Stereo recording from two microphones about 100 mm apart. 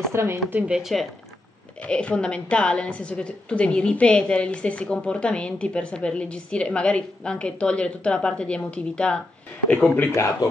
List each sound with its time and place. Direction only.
0.1 s speech: 25° right (ahead or behind)
0.7 s speech: 5° right (ahead or behind)
1.8 s a woman's voice: 10° left (ahead or behind)
9.9 s speech: 30° left (ahead or behind)